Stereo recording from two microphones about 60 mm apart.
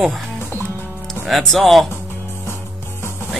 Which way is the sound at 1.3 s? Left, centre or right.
Centre.